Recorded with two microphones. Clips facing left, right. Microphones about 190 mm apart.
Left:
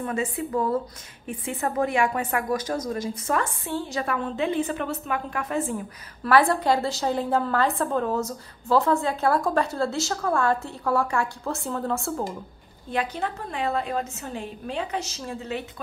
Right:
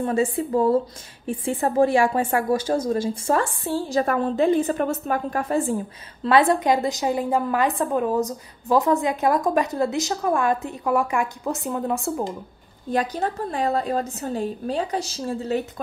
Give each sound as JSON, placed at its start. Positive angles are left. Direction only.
{"t": 0.0, "sound": "a woman's voice", "side_deg": -30}
{"t": 12.9, "sound": "a woman's voice", "side_deg": -40}